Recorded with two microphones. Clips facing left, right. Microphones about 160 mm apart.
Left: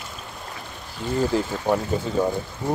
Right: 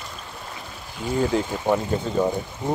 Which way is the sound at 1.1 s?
Centre (ahead or behind).